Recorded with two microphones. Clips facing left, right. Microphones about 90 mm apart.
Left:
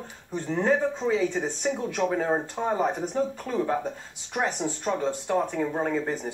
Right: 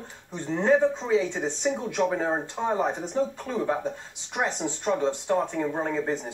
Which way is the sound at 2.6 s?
10° right (ahead or behind).